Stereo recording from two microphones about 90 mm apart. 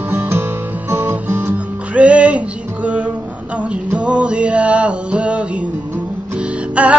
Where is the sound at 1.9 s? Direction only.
15° right (ahead or behind).